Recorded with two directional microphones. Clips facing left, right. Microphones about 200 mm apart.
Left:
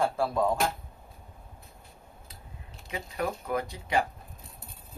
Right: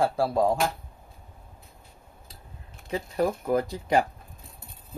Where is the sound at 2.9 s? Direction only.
35° right (ahead or behind).